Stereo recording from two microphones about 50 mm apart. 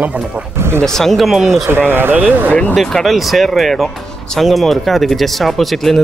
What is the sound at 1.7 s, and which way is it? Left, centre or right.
Speech, right.